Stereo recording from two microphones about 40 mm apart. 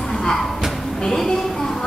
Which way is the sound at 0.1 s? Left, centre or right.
Centre.